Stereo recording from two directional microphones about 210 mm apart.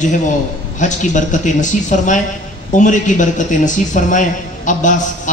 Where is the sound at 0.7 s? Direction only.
35° left (ahead or behind).